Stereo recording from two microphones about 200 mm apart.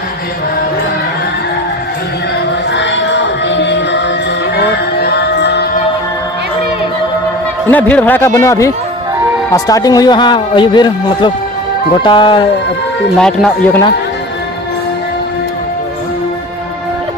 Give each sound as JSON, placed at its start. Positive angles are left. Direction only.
{"t": 2.7, "sound": "music", "side_deg": 60}
{"t": 5.0, "sound": "music", "side_deg": 55}
{"t": 7.7, "sound": "a man's voice", "side_deg": 10}
{"t": 13.2, "sound": "speech", "side_deg": 5}